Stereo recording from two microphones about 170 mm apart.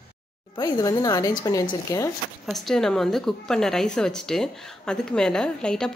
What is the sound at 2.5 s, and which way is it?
A woman's voice, centre (ahead or behind).